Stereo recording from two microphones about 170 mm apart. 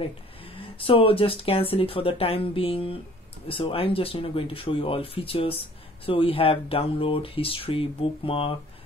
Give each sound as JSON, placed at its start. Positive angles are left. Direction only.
{"t": 0.5, "sound": "speech", "side_deg": 30}